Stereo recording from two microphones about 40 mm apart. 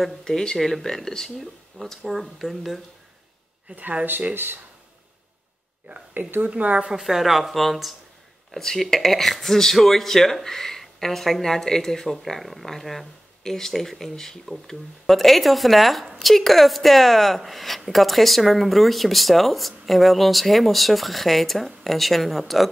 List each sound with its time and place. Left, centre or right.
0.2 s speech: centre
4.3 s speech: right
6.2 s speech: right
6.6 s speech: right
7.0 s speech: centre